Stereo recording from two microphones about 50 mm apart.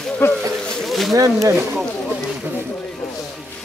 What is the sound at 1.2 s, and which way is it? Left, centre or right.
Speech, right.